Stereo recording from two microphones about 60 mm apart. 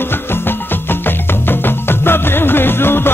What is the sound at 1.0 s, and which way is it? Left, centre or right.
Music, left.